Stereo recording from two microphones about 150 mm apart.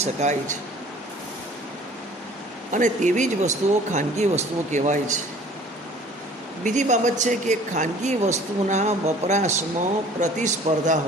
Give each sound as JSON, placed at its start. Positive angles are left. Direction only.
{"t": 0.0, "sound": "speech", "side_deg": -50}
{"t": 2.7, "sound": "speech", "side_deg": -55}
{"t": 6.6, "sound": "speech", "side_deg": -55}